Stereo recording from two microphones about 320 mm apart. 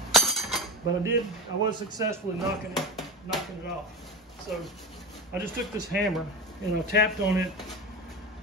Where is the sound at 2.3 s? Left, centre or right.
Centre.